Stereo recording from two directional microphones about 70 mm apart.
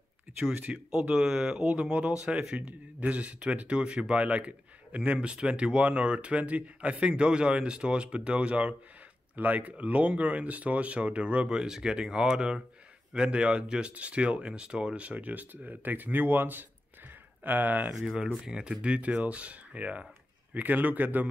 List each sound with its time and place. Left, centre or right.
0.9 s a man's voice: centre; by 17.9 s right
17.9 s a man's voice: centre; by 21.3 s right